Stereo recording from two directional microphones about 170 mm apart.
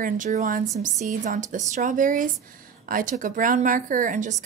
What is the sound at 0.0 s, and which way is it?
A woman's voice, 50° right (ahead or behind).